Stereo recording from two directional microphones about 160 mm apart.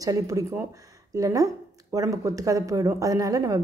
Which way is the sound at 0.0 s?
20° right (ahead or behind).